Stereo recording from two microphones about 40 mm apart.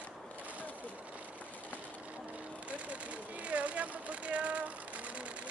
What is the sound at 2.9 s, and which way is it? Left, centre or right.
Vehicle, right.